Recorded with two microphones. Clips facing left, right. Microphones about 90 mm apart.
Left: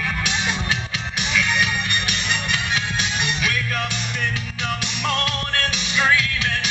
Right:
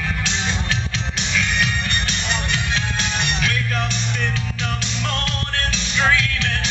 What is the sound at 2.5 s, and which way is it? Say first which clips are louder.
Music: even; 15° left (ahead or behind).